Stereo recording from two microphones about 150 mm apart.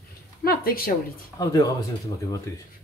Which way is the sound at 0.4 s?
85° left.